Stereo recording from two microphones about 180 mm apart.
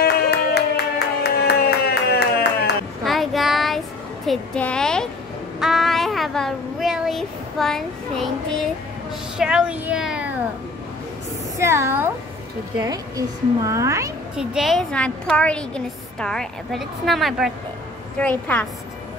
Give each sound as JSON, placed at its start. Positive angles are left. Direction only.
{"t": 0.0, "sound": "music", "side_deg": 65}
{"t": 2.1, "sound": "a sound", "side_deg": 65}
{"t": 3.0, "sound": "child singing", "side_deg": 0}
{"t": 4.3, "sound": "a woman's voice", "side_deg": 5}
{"t": 9.4, "sound": "speech", "side_deg": -5}
{"t": 11.5, "sound": "speech", "side_deg": -15}
{"t": 14.3, "sound": "a woman's voice", "side_deg": -5}